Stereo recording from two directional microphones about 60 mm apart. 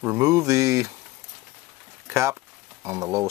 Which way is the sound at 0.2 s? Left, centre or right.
Right.